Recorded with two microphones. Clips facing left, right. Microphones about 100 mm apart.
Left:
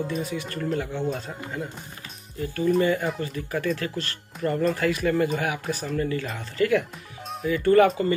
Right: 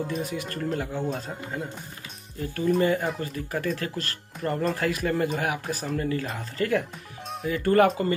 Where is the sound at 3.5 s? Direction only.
40° right (ahead or behind).